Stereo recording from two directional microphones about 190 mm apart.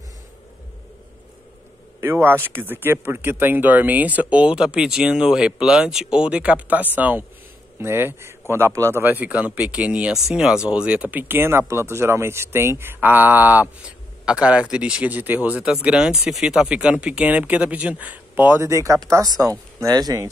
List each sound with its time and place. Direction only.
2.0 s a man's voice: 15° right (ahead or behind)